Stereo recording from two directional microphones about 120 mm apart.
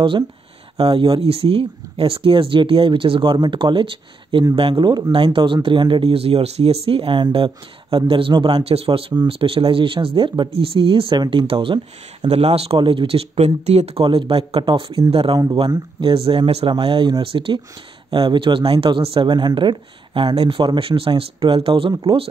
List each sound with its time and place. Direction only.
0.7 s speech: 50° right (ahead or behind)